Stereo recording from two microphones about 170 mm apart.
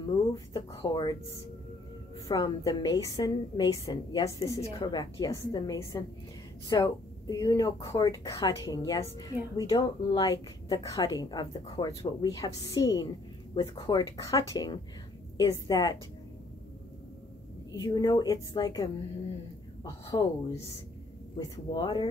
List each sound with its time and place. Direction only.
0.3 s speech: 25° left (ahead or behind)
2.2 s speech: 20° left (ahead or behind)
17.7 s speech: 25° left (ahead or behind)